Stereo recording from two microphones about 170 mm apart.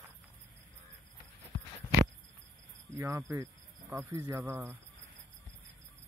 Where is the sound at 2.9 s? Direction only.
15° right (ahead or behind).